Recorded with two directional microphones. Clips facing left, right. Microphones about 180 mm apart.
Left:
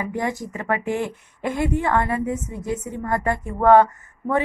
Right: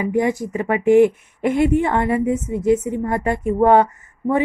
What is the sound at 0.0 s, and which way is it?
A woman's voice, 15° right (ahead or behind).